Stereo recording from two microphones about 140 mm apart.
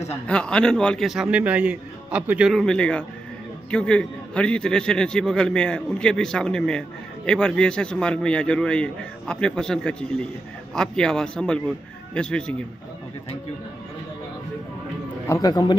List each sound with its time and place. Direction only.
0.3 s a man's voice: 5° left (ahead or behind)
2.6 s a man's voice: 5° left (ahead or behind)
15.2 s speech: 25° left (ahead or behind)